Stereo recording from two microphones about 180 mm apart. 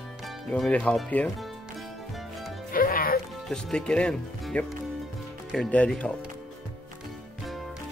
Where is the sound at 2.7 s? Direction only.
55° left (ahead or behind).